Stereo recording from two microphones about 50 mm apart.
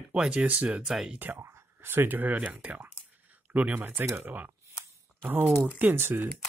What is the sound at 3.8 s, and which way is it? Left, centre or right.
Speech, right.